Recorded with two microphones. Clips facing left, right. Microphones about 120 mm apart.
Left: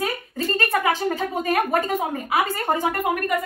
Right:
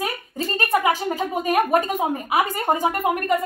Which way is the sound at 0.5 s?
15° right (ahead or behind).